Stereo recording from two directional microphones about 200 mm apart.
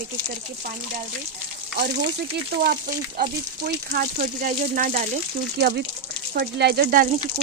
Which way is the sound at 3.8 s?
45° right (ahead or behind).